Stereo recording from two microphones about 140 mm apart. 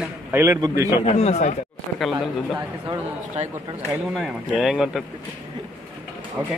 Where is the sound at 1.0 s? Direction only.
50° left (ahead or behind).